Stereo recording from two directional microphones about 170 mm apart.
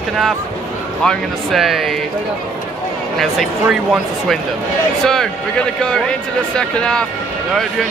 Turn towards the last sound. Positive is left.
turn(degrees=5)  # may be behind; listen again after turning